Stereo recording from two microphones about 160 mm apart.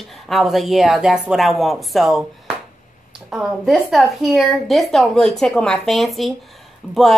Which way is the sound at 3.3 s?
Centre (ahead or behind).